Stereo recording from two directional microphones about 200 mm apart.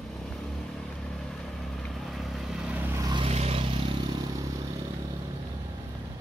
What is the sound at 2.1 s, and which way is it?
Vehicle, centre (ahead or behind).